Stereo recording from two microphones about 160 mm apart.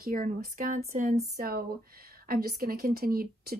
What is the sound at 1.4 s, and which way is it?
A woman's voice, 70° right (ahead or behind).